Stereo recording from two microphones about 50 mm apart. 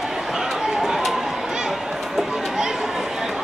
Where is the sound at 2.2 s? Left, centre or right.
Centre.